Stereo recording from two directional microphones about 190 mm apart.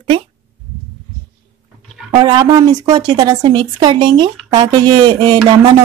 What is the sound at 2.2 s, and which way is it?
A woman's voice, 20° right (ahead or behind).